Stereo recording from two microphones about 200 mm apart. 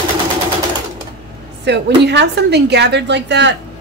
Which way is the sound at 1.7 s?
60° right (ahead or behind).